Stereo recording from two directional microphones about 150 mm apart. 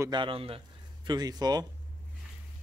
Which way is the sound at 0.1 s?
35° right (ahead or behind).